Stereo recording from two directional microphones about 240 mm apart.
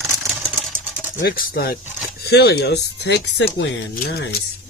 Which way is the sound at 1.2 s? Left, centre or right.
Left.